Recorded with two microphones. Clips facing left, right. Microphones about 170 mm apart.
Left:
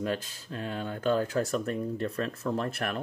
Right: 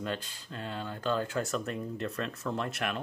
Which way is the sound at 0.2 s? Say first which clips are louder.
Left 4 dB; 50° left (ahead or behind).